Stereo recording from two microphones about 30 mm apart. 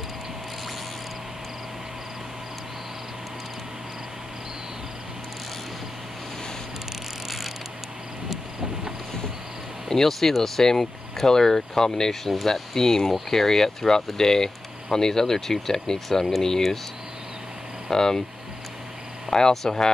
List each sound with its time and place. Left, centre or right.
7.2 s a sound: centre
9.8 s speech: centre
17.9 s speech: centre
19.5 s speech: centre